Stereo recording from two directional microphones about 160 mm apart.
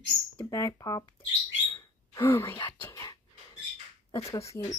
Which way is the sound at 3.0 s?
25° left (ahead or behind).